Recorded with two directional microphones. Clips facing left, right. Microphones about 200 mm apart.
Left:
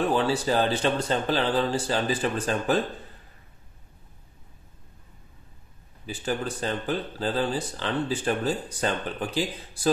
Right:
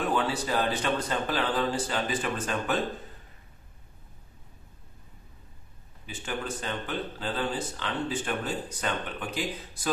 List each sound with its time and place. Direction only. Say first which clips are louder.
0.1 s speech: left 4 dB; 30° left (ahead or behind)
6.0 s speech: left 5 dB; 35° left (ahead or behind)